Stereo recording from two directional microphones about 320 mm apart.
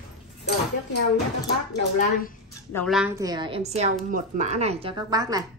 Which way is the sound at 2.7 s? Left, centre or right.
Centre.